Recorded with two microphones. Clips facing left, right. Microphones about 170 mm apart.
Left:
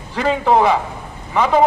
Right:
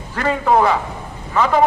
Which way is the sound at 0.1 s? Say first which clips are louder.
Left 1 dB; 15° left (ahead or behind).